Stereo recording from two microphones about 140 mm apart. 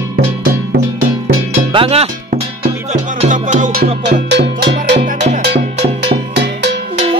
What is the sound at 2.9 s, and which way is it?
Music, 60° right (ahead or behind).